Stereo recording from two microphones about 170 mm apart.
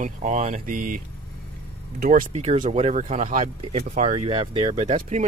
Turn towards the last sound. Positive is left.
turn(degrees=-45)  # may be behind; listen again after turning